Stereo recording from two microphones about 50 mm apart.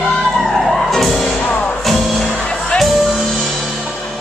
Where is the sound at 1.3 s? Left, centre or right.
Left.